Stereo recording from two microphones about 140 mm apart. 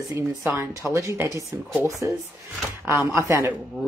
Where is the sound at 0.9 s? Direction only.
20° right (ahead or behind).